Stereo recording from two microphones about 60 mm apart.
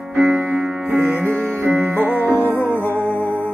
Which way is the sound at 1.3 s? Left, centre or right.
Right.